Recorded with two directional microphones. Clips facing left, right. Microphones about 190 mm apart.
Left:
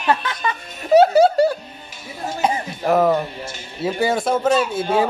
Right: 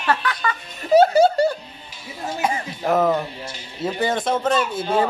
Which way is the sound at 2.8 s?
5° left (ahead or behind).